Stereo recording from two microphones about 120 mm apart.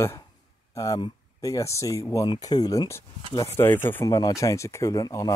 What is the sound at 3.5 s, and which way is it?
Speech, 20° left (ahead or behind).